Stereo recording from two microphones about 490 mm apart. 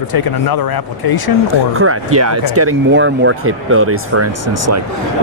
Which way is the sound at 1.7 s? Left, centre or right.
Right.